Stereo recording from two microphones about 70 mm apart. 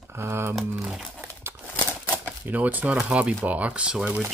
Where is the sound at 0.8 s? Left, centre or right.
Centre.